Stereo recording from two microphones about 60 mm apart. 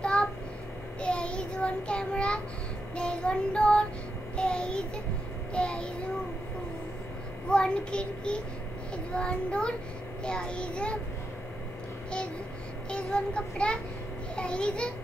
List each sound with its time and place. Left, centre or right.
0.0 s a sound: centre
1.0 s child singing: centre
7.4 s a child's voice: centre
12.9 s a child's voice: centre